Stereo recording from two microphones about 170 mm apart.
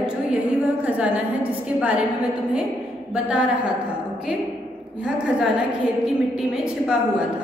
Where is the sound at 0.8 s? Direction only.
10° right (ahead or behind).